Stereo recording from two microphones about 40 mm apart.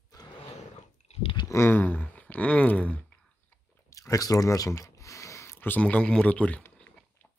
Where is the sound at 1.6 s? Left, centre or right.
Left.